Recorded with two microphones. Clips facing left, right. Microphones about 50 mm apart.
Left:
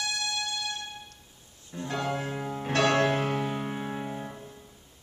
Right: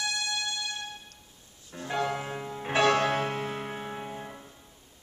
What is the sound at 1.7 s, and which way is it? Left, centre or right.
Music, centre.